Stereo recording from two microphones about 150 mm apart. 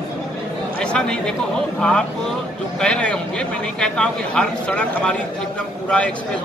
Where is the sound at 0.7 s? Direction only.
5° left (ahead or behind).